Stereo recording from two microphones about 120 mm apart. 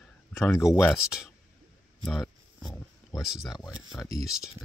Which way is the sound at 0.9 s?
5° right (ahead or behind).